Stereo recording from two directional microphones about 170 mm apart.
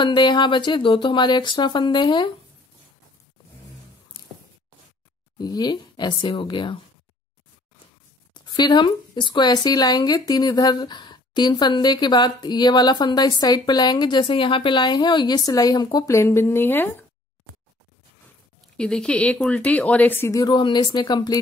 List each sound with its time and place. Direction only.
0.0 s speech: 25° left (ahead or behind)
4.1 s a sound: 30° left (ahead or behind)
5.4 s speech: 25° left (ahead or behind)
8.5 s speech: 25° left (ahead or behind)
18.8 s speech: 5° left (ahead or behind); by 21.4 s 25° left (ahead or behind)